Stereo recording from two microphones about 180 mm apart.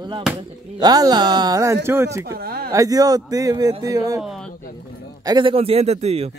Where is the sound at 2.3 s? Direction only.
60° right (ahead or behind).